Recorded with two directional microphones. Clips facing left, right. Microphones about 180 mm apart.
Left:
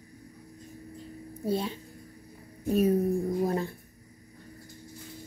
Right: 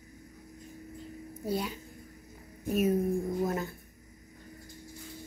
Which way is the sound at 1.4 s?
25° left (ahead or behind).